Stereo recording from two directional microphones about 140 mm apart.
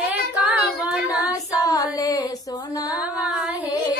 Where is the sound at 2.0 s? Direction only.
30° left (ahead or behind).